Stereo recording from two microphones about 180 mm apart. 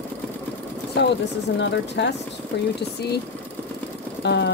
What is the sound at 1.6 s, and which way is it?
Speech, 80° left.